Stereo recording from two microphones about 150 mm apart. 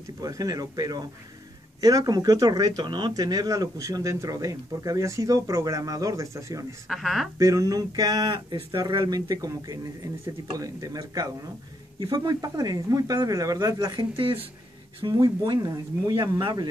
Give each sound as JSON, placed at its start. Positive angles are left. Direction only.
{"t": 0.2, "sound": "speech", "side_deg": -25}
{"t": 6.9, "sound": "speech", "side_deg": 0}
{"t": 7.3, "sound": "speech", "side_deg": -20}